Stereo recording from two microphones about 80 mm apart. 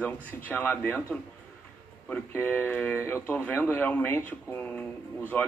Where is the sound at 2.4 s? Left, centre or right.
Left.